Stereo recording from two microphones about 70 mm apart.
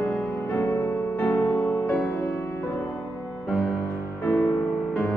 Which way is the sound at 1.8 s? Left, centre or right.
Left.